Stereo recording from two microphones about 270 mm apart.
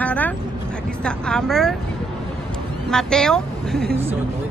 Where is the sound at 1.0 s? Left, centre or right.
Centre.